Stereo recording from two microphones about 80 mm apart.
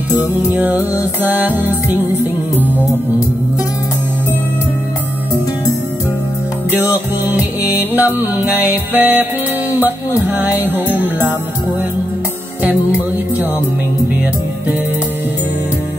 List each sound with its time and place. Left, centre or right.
0.1 s music: right
6.7 s music: right
12.6 s music: right